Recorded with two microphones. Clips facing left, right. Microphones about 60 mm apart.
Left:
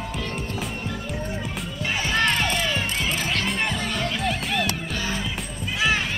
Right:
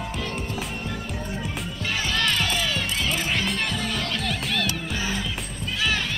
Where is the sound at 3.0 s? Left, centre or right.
Centre.